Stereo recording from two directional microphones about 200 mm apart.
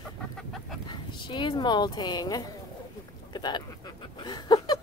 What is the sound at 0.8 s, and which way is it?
Speech, 25° left (ahead or behind).